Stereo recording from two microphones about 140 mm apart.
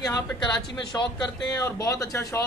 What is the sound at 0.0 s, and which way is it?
Speech, 25° left (ahead or behind).